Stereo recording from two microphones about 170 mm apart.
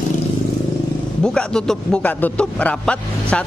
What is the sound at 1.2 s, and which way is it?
A man's voice, 5° left (ahead or behind).